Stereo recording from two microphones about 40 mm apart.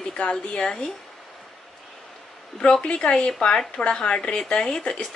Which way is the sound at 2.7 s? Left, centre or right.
Left.